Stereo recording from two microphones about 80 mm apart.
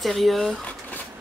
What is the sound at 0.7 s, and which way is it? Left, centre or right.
Vehicle, centre.